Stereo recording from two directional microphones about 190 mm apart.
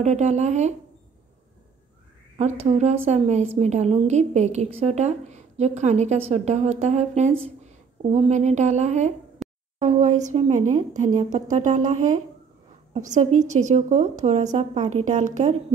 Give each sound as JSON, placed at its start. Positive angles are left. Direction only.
{"t": 0.0, "sound": "a woman's voice", "side_deg": -35}
{"t": 2.6, "sound": "a woman's voice", "side_deg": -35}
{"t": 9.4, "sound": "a sound", "side_deg": 0}
{"t": 9.8, "sound": "a woman's voice", "side_deg": -40}